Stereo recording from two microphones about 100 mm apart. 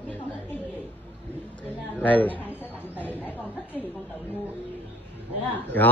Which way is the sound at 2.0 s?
15° left (ahead or behind).